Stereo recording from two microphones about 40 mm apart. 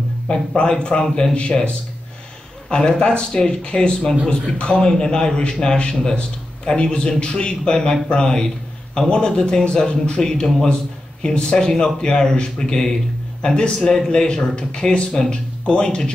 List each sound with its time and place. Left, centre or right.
0.6 s a man's voice: left
2.7 s a man's voice: left